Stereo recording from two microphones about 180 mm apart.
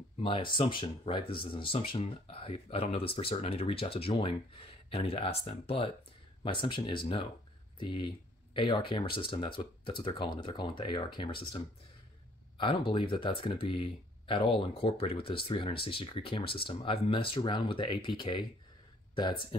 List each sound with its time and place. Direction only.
0.2 s speech: 30° left (ahead or behind)